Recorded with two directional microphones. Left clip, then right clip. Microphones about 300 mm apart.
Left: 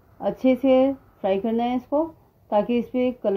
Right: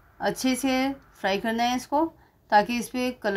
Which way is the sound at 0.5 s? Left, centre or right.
Right.